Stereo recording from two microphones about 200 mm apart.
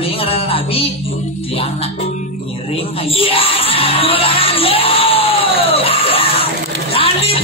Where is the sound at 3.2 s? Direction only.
30° left (ahead or behind).